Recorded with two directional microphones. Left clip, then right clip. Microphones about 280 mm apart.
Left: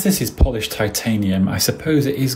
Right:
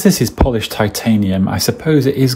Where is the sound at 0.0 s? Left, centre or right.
Centre.